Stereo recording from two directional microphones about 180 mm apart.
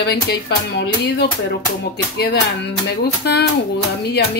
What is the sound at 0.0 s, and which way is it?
Speech, 65° left (ahead or behind).